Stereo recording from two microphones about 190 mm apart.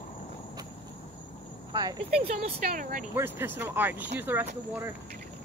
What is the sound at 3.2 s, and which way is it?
Speech, 10° right (ahead or behind).